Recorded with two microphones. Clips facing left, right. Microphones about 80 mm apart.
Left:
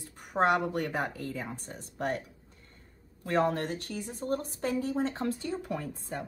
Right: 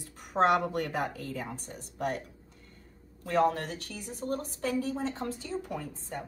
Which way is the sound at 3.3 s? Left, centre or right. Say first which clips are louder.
Right 1 dB; left.